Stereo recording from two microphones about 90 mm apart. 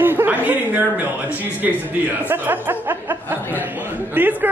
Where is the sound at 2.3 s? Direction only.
20° right (ahead or behind).